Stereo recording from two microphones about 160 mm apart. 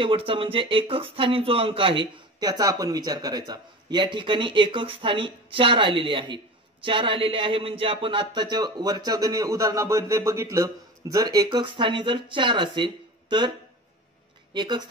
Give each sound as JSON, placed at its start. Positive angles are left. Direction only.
{"t": 0.0, "sound": "speech", "side_deg": -35}
{"t": 14.5, "sound": "speech", "side_deg": -30}